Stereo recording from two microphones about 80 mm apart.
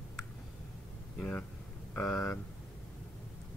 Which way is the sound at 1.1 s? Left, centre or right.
Centre.